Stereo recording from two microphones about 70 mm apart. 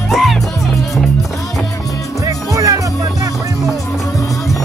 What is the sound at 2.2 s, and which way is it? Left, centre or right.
Music, right.